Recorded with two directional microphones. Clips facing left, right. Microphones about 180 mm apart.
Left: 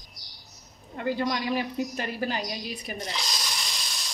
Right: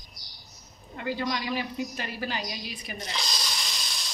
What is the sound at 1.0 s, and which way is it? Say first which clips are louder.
A woman's voice: left 3 dB; 45° left (ahead or behind).